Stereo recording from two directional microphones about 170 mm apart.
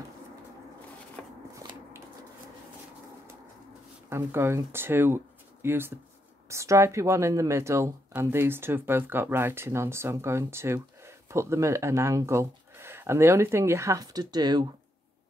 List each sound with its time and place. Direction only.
1.2 s shuffling cards: 5° left (ahead or behind)
4.1 s speech: 15° right (ahead or behind)